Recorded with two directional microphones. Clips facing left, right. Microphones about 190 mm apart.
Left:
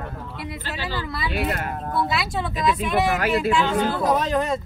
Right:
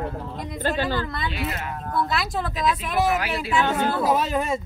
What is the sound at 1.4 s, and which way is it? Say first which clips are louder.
Speech: left 4 dB; 50° left (ahead or behind).